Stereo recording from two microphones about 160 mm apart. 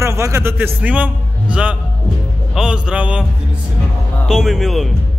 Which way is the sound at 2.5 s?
5° right (ahead or behind).